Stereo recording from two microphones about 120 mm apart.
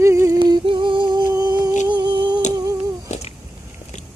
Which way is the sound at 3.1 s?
65° left (ahead or behind).